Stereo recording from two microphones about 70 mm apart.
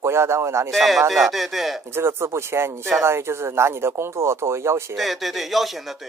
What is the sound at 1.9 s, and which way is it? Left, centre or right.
Speech, right.